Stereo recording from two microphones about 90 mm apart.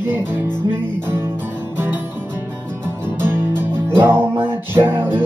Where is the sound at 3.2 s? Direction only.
25° right (ahead or behind).